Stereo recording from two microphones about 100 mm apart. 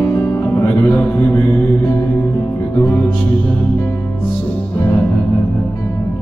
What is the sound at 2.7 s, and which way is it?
Music, 25° left (ahead or behind).